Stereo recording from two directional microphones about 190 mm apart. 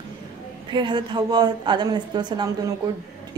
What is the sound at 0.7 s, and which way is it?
Speech, 25° right (ahead or behind).